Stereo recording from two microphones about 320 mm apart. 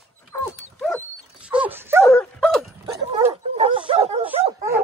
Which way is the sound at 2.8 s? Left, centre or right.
Centre.